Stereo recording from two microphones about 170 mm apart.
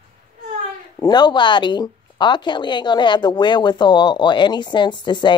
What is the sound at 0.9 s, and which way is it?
A woman's voice, 25° left (ahead or behind).